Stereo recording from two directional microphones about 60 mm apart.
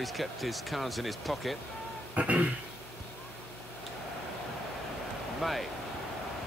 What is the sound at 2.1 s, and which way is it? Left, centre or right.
Speech, right.